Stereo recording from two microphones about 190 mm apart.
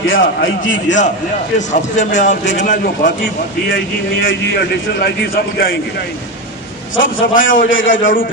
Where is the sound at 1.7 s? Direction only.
40° left (ahead or behind).